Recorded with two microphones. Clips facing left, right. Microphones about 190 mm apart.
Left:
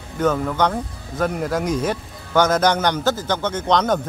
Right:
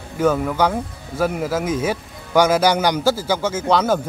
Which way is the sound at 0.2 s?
10° right (ahead or behind).